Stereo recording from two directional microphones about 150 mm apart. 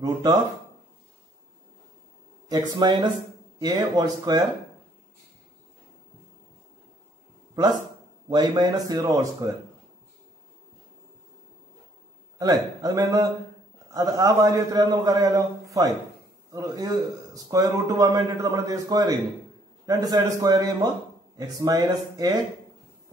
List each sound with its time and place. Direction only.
0.0 s a man's voice: 25° right (ahead or behind)
2.4 s a man's voice: 25° right (ahead or behind)
8.3 s a man's voice: 30° right (ahead or behind)
12.4 s a man's voice: 25° right (ahead or behind)